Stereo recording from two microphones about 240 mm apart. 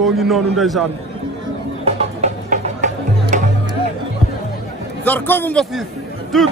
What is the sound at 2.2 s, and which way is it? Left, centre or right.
Music, right.